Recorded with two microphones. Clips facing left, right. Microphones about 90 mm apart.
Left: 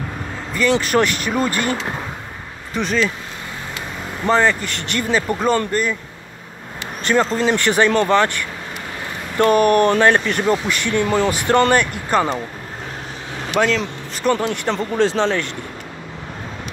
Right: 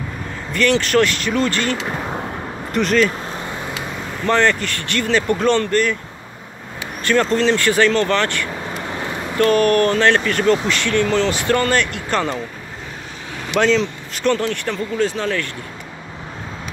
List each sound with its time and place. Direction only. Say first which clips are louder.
0.6 s speech: right 1 dB; 10° left (ahead or behind)
2.7 s speech: right 3 dB; centre (ahead or behind)
4.3 s speech: even; 10° left (ahead or behind)
7.2 s speech: right 2 dB; 10° left (ahead or behind)
7.5 s speech: even; 20° left (ahead or behind)
12.1 s speech: left 3 dB; 10° left (ahead or behind)
13.6 s speech: right 2 dB; 5° left (ahead or behind)
14.3 s speech: left 4 dB; 15° left (ahead or behind)
15.0 s speech: left 3 dB; 30° left (ahead or behind)